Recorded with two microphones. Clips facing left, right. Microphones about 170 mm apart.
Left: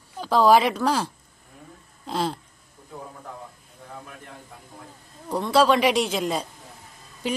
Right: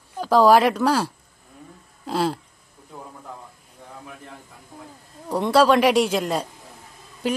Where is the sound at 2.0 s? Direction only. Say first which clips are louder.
Right 3 dB; 5° right (ahead or behind).